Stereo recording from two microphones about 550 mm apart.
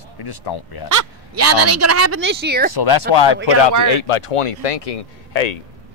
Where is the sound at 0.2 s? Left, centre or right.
Left.